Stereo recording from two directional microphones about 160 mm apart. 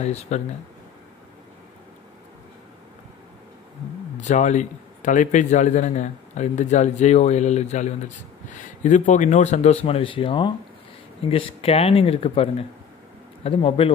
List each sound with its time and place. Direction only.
0.1 s a man's voice: 45° left (ahead or behind)
4.2 s a man's voice: 45° left (ahead or behind)